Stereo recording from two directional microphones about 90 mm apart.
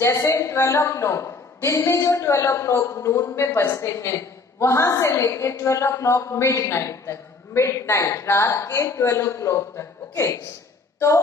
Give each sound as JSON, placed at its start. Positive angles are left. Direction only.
{"t": 0.0, "sound": "a woman's voice", "side_deg": 30}